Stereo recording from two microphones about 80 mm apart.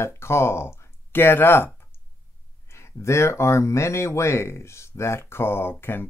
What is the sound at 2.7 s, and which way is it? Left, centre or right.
Speech, left.